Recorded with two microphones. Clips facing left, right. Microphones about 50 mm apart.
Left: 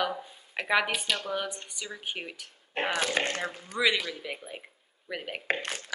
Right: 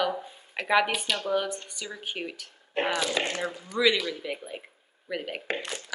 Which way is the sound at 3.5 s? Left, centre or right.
Left.